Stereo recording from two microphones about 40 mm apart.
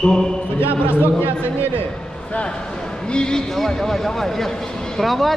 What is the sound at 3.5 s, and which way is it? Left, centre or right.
Speech, centre.